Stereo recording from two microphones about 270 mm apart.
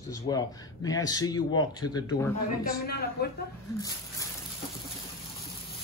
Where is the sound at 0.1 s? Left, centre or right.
Centre.